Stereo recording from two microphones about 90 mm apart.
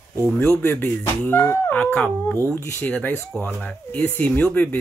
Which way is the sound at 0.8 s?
25° left (ahead or behind).